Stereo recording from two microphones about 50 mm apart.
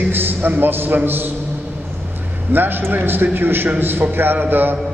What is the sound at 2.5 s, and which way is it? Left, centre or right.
A man's voice, right.